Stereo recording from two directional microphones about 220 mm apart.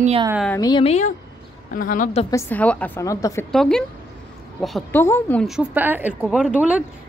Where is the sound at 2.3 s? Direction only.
5° left (ahead or behind).